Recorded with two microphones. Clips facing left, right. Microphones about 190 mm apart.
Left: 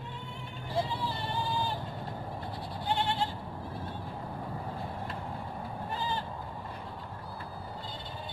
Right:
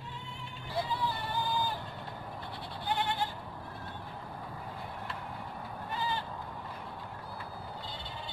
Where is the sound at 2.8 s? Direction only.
25° left (ahead or behind).